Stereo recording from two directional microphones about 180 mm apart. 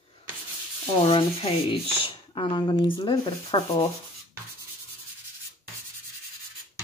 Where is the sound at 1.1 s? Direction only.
30° left (ahead or behind).